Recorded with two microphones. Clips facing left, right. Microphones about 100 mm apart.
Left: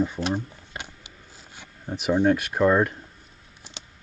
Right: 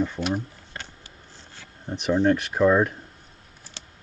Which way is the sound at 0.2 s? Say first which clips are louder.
Even; 5° right (ahead or behind).